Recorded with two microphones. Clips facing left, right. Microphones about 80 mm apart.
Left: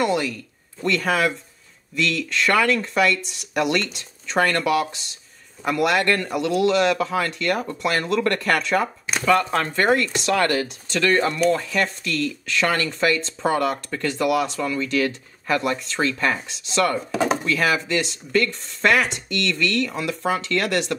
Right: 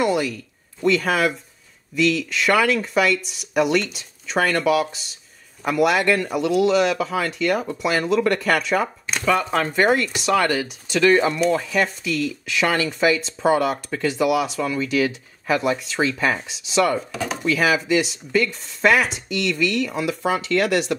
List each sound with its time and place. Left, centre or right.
0.0 s speech: centre
17.1 s speech: left
17.5 s speech: centre